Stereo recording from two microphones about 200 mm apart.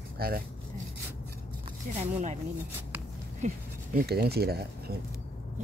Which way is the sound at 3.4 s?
35° right (ahead or behind).